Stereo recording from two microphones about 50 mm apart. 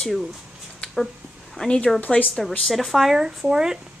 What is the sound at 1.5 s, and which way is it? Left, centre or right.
A woman's voice, centre.